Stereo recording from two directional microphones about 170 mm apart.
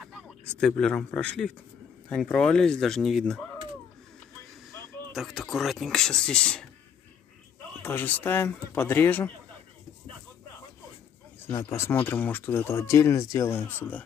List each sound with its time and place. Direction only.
0.0 s speech: centre (ahead or behind)
5.1 s speech: centre (ahead or behind)
7.8 s speech: 10° left (ahead or behind)
11.4 s speech: 15° left (ahead or behind)